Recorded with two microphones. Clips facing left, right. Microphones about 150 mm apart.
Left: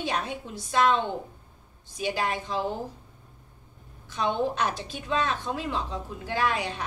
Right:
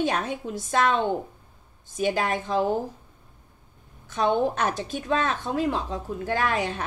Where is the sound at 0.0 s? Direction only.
45° right (ahead or behind).